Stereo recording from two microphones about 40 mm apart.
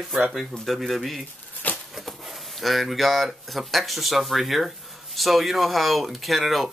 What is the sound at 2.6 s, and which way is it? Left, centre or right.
Speech, centre.